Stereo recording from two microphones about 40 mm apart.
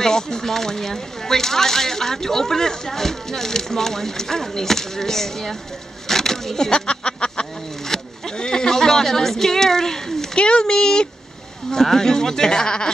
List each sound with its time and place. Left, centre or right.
0.0 s speech: centre
6.0 s a sound: centre
6.7 s speech: left
7.9 s a sound: centre
8.4 s speech: centre
10.3 s a child's voice: left